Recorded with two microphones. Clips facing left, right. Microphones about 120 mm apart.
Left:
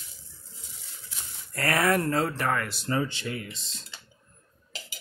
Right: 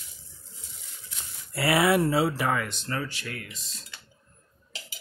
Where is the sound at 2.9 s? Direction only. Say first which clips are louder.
Left 4 dB; 25° left (ahead or behind).